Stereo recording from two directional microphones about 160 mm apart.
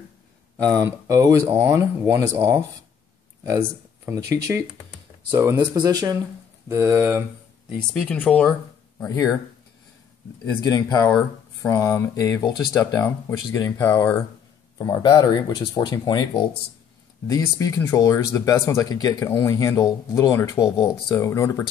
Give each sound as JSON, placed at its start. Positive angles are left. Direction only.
{"t": 0.7, "sound": "speech", "side_deg": -20}
{"t": 7.9, "sound": "speech", "side_deg": 5}
{"t": 9.0, "sound": "speech", "side_deg": 20}
{"t": 10.4, "sound": "speech", "side_deg": 25}
{"t": 17.3, "sound": "speech", "side_deg": 20}